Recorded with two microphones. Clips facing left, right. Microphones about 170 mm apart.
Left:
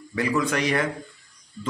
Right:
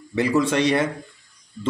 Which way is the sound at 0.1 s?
25° right (ahead or behind).